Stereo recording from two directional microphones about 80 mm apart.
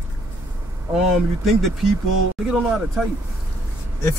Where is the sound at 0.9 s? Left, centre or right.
Centre.